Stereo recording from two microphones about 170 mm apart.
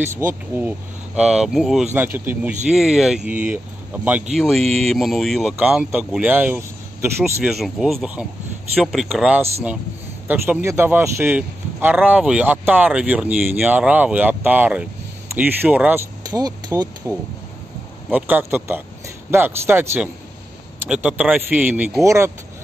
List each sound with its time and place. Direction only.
0.0 s a man's voice: 15° right (ahead or behind)
7.4 s a man's voice: centre (ahead or behind)
16.3 s speech: 25° right (ahead or behind)
18.1 s a man's voice: 10° right (ahead or behind)